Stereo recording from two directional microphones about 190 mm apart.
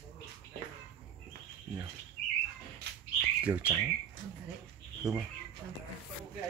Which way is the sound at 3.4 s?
5° right (ahead or behind).